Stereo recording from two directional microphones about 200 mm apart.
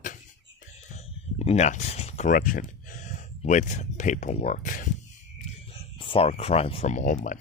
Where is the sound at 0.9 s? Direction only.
35° left (ahead or behind).